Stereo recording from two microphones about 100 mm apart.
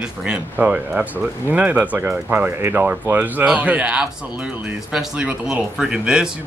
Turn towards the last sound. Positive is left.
turn(degrees=-5)  # may be behind; listen again after turning